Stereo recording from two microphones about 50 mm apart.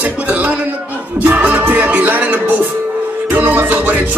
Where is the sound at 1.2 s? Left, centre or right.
Right.